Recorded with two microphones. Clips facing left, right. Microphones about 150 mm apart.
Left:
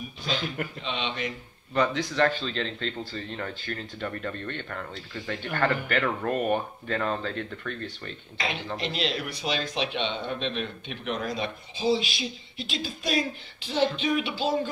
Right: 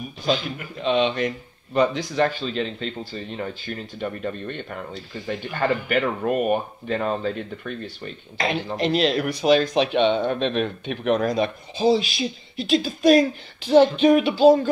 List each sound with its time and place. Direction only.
0.8 s speech: 45° right (ahead or behind)
1.7 s speech: 15° right (ahead or behind)
8.7 s speech: 45° right (ahead or behind)